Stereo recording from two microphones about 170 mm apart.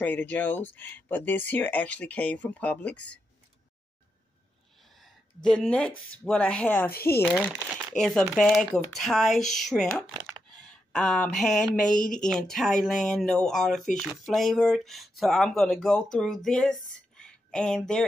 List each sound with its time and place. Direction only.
0.0 s speech: 10° left (ahead or behind)
5.0 s speech: 5° left (ahead or behind)
6.9 s speech: 65° left (ahead or behind)
7.2 s speech: 10° left (ahead or behind)
17.2 s a sound: 5° left (ahead or behind)